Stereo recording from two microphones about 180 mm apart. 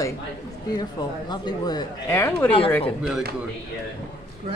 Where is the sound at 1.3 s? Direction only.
25° left (ahead or behind).